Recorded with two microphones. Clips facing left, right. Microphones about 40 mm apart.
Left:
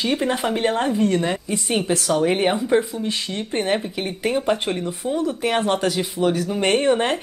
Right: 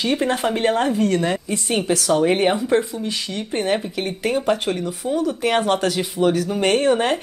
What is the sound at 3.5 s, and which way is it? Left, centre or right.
A woman's voice, centre.